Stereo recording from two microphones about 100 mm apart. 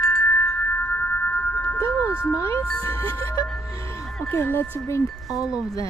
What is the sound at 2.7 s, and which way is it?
Speech, 30° left (ahead or behind).